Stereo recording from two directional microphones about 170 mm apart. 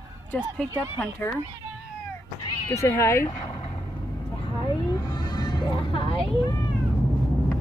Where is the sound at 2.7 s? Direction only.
15° left (ahead or behind).